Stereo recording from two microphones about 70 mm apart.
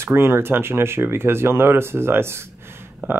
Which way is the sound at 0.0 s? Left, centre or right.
Right.